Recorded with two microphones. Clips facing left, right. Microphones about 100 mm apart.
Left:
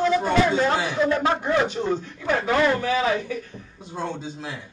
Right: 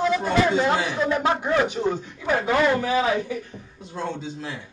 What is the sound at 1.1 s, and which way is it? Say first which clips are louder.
A man's voice: even; 15° right (ahead or behind).